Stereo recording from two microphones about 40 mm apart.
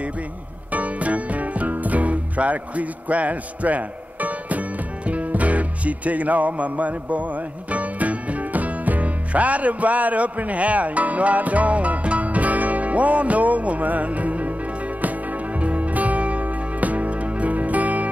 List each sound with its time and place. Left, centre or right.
0.7 s music: right
15.6 s music: right